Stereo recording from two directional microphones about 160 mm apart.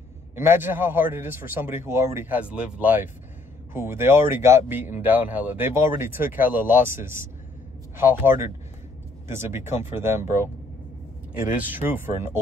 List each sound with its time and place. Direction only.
0.4 s speech: 15° right (ahead or behind)
11.5 s speech: 10° right (ahead or behind)